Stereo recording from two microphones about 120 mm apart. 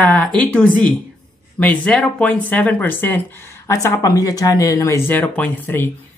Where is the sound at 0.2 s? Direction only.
10° left (ahead or behind).